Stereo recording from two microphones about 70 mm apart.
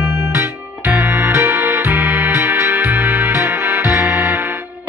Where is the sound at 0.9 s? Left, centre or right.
Right.